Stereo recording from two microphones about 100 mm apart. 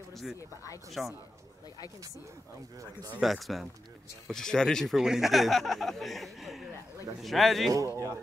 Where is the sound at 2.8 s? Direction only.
40° right (ahead or behind).